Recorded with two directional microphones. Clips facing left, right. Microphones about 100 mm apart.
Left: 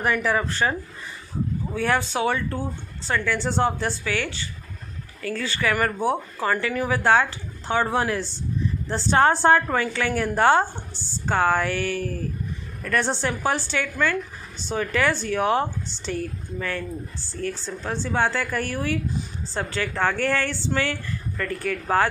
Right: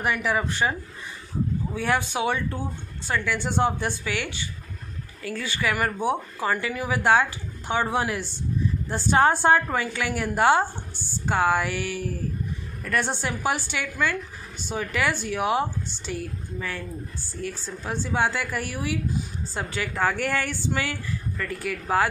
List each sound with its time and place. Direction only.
0.0 s speech: 15° right (ahead or behind)
13.1 s speech: 10° right (ahead or behind)